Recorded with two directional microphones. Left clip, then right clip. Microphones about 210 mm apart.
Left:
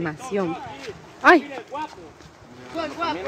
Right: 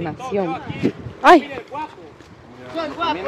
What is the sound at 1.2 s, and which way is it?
Speech, 15° right (ahead or behind).